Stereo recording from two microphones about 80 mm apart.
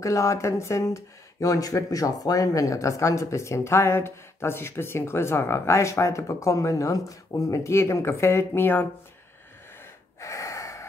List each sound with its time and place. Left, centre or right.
0.0 s speech: left
10.2 s gasp: left